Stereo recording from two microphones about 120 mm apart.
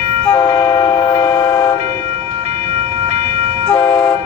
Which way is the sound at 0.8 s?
35° left (ahead or behind).